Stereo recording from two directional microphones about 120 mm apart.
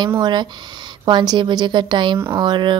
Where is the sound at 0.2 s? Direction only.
40° right (ahead or behind).